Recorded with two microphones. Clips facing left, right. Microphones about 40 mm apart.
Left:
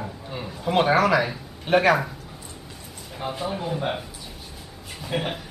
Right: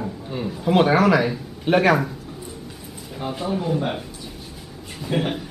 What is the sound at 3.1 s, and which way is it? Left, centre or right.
Speech, centre.